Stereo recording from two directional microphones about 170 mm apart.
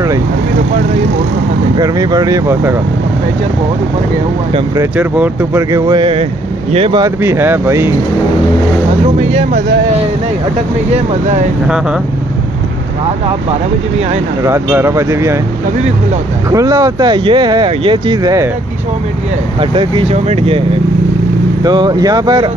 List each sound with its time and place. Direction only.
1.8 s speech: 25° right (ahead or behind)
4.9 s speech: 10° right (ahead or behind); by 7.1 s 30° right (ahead or behind)
7.2 s speech: 15° right (ahead or behind)
14.4 s speech: 15° right (ahead or behind)
16.4 s speech: 20° right (ahead or behind)
19.6 s speech: 30° right (ahead or behind)
21.6 s speech: 25° right (ahead or behind)